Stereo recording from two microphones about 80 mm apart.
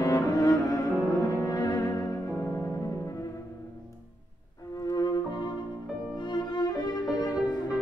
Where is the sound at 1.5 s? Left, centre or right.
Left.